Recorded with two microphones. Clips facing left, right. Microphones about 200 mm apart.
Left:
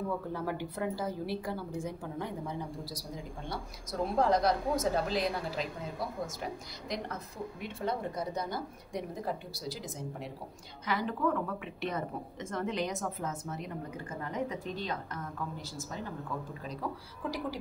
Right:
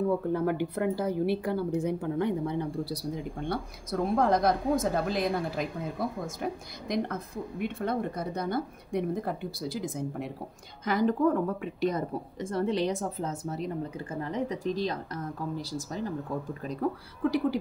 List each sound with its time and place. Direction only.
0.3 s a woman's voice: 60° right (ahead or behind)
10.9 s a woman's voice: 45° right (ahead or behind)
16.6 s a woman's voice: 55° right (ahead or behind)